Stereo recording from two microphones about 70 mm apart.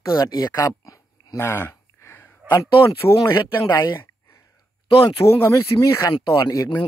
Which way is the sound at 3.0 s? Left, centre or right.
Left.